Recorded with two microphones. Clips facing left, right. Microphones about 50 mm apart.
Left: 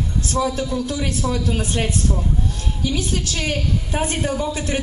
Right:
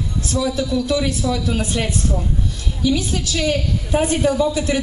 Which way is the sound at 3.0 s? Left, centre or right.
Left.